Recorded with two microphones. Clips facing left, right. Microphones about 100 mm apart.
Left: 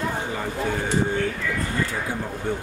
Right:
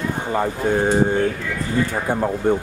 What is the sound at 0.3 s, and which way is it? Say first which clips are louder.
Speech: right 7 dB; 50° right (ahead or behind).